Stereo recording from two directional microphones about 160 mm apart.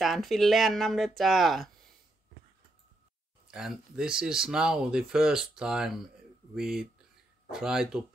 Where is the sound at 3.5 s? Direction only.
5° right (ahead or behind).